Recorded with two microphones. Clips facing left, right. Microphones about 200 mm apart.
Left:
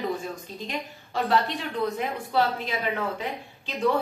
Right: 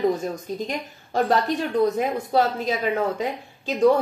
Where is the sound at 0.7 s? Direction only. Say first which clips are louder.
Right 4 dB; 45° right (ahead or behind).